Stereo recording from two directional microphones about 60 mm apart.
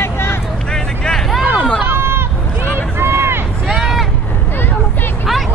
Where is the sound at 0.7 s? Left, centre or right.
Centre.